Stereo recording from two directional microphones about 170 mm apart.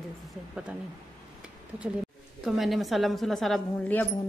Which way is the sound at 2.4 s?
Centre (ahead or behind).